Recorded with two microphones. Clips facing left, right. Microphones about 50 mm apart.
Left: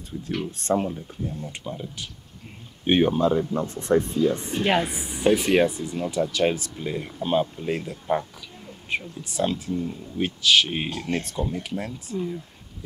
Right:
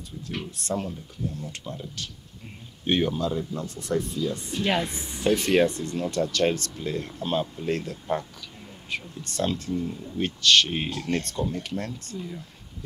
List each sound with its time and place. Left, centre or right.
0.5 s speech: left
4.6 s a woman's voice: centre